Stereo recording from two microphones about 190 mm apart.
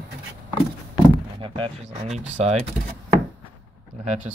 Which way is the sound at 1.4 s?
25° right (ahead or behind).